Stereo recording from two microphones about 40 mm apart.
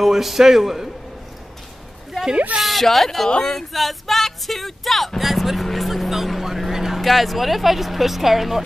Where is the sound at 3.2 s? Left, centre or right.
Left.